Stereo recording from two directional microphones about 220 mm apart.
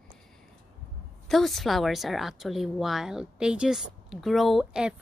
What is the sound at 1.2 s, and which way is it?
Speech, centre (ahead or behind).